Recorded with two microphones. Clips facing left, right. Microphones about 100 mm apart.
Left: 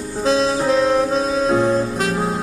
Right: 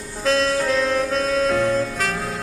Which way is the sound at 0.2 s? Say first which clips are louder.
Left 2 dB; 35° left (ahead or behind).